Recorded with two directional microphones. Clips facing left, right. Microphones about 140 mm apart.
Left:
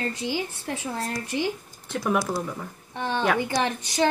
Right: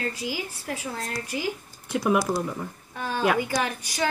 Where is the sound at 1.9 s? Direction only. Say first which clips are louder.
Right 2 dB; 10° right (ahead or behind).